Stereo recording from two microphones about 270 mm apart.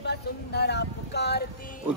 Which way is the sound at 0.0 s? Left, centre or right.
Left.